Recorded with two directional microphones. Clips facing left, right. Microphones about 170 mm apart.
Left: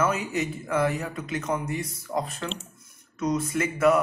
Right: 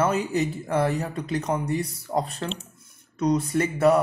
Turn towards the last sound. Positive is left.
turn(degrees=-35)  # may be behind; listen again after turning